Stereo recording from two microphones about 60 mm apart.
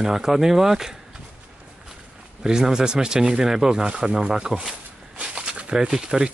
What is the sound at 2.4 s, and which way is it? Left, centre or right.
Speech, centre.